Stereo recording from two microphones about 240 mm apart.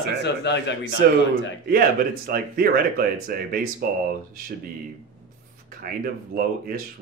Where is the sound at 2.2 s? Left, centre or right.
Right.